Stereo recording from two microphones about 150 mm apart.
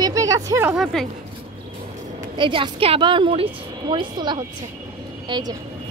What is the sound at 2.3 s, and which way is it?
A woman's voice, 35° right (ahead or behind).